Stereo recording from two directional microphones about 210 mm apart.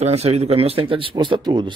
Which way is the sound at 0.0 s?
30° right (ahead or behind).